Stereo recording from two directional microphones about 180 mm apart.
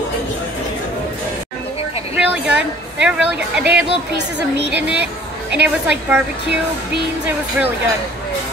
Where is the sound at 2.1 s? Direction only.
5° right (ahead or behind).